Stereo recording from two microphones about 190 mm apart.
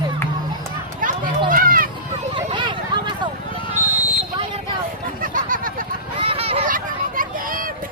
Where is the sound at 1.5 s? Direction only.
50° right (ahead or behind).